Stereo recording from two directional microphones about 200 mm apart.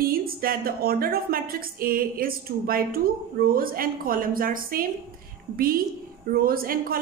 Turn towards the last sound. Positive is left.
turn(degrees=-45)  # may be behind; listen again after turning